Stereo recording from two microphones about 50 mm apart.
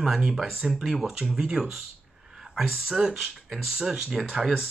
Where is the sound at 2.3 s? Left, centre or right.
Centre.